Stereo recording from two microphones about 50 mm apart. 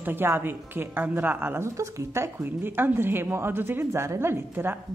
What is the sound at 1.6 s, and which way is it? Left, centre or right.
Speech, right.